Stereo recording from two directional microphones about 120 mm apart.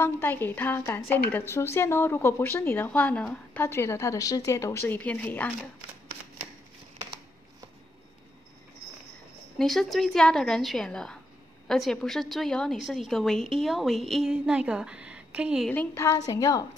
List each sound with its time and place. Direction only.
0.0 s a woman's voice: 15° left (ahead or behind)
9.6 s a woman's voice: centre (ahead or behind)
15.7 s a woman's voice: 15° left (ahead or behind)
16.3 s a woman's voice: 30° left (ahead or behind)